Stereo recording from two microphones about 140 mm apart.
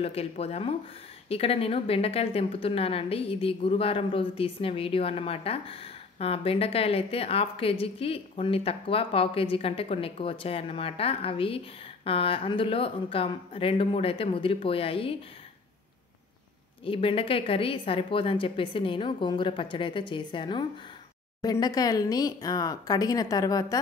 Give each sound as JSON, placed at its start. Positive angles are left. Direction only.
{"t": 0.0, "sound": "a woman's voice", "side_deg": 45}
{"t": 16.8, "sound": "speech", "side_deg": 40}